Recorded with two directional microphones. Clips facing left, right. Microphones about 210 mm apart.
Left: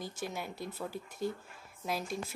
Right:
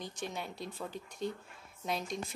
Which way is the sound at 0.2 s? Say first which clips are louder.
Even; 5° left (ahead or behind).